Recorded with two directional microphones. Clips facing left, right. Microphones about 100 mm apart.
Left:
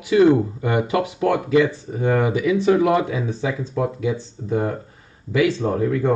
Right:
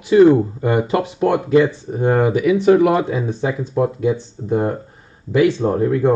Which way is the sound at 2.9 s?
30° right (ahead or behind).